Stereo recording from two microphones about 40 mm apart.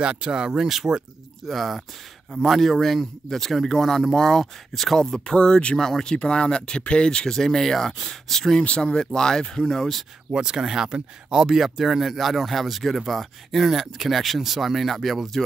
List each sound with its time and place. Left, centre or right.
0.0 s speech: right; by 5.8 s left
5.8 s speech: centre
7.3 s speech: centre
8.6 s speech: left
10.3 s speech: centre